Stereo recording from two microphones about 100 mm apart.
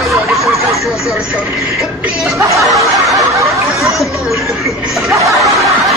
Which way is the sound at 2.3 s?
30° right (ahead or behind).